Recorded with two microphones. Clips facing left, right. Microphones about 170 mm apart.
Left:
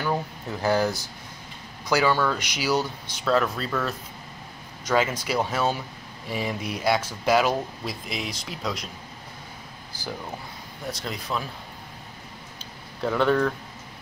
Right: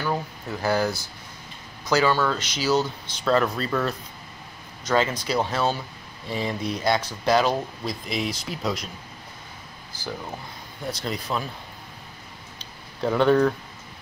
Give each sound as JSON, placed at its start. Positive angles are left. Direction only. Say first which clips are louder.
{"t": 0.0, "sound": "speech", "louder": "even", "side_deg": 15}
{"t": 4.8, "sound": "speech", "louder": "right 1 dB", "side_deg": 10}
{"t": 10.9, "sound": "speech", "louder": "right 2 dB", "side_deg": 0}
{"t": 13.0, "sound": "speech", "louder": "right 3 dB", "side_deg": 0}